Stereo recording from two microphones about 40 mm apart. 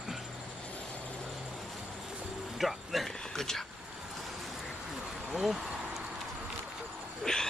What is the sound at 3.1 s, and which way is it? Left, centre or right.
Speech, centre.